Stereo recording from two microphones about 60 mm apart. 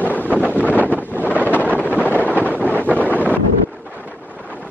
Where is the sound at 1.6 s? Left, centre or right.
Left.